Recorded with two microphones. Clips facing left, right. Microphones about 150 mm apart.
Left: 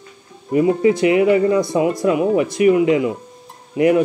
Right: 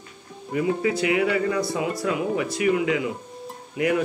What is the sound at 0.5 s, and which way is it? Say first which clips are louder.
Speech: left 9 dB; 30° left (ahead or behind).